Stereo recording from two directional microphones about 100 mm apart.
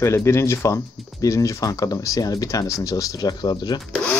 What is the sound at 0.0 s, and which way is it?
Speech, 25° left (ahead or behind).